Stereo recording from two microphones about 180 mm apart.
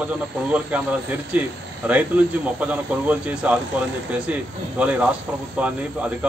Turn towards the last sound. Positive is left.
turn(degrees=-10)  # may be behind; listen again after turning